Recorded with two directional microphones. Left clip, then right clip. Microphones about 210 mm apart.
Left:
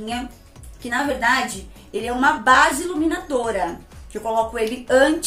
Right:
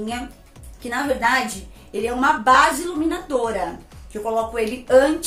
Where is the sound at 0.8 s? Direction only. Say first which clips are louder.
Left 1 dB; 5° left (ahead or behind).